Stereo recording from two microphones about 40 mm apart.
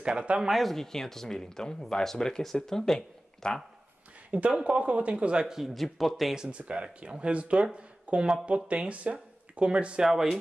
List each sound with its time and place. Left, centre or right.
0.0 s speech: right
0.5 s speech: centre
0.7 s speech: centre
4.3 s speech: right
5.1 s speech: right
5.5 s a man's voice: centre
6.5 s speech: right